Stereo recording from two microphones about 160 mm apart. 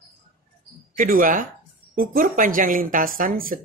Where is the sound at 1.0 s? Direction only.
60° right (ahead or behind).